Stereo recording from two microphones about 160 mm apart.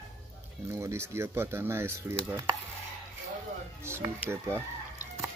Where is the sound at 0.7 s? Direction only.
15° right (ahead or behind).